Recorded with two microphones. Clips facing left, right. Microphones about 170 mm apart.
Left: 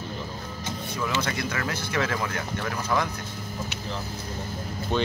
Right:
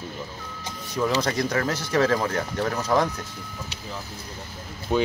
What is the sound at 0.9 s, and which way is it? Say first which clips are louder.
Speech: right 6 dB; 35° right (ahead or behind).